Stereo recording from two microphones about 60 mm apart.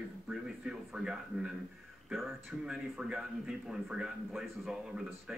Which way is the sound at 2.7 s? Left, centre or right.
Centre.